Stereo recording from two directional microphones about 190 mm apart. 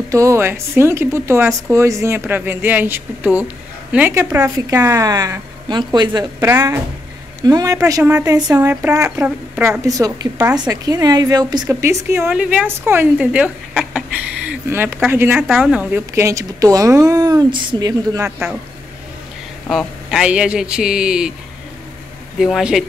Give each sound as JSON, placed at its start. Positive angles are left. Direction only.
{"t": 0.1, "sound": "a woman's voice", "side_deg": -15}
{"t": 15.4, "sound": "a woman's voice", "side_deg": 0}
{"t": 19.7, "sound": "a man's voice", "side_deg": 0}
{"t": 22.4, "sound": "a man's voice", "side_deg": -5}